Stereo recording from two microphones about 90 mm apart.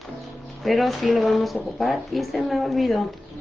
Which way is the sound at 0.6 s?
Centre (ahead or behind).